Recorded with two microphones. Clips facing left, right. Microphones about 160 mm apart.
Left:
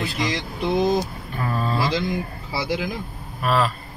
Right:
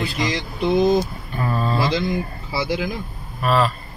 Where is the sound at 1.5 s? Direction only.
Centre (ahead or behind).